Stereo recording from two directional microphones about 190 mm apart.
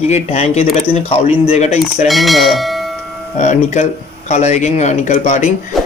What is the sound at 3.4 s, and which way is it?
Speech, 40° left (ahead or behind).